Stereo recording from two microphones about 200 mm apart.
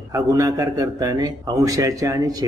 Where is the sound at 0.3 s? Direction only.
15° right (ahead or behind).